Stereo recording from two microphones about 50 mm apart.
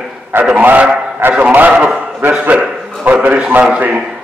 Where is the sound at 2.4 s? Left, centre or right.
Right.